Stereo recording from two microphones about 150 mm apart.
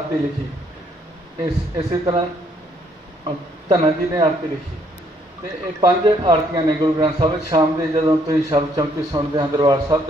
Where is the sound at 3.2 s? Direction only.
35° right (ahead or behind).